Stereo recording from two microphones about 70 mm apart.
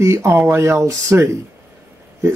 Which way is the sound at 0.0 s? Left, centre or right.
Right.